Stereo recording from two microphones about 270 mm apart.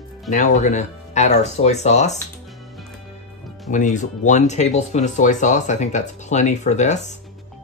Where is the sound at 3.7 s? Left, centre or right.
Left.